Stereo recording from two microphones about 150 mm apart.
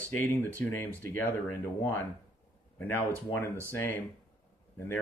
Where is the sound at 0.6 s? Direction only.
10° left (ahead or behind).